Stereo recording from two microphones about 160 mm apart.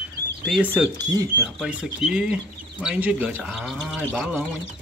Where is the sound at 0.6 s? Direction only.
10° right (ahead or behind).